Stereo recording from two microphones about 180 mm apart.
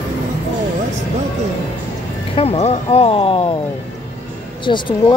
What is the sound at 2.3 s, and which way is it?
Speech, 35° left (ahead or behind).